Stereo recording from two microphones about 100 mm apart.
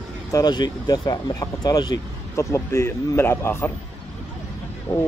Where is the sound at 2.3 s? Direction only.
30° left (ahead or behind).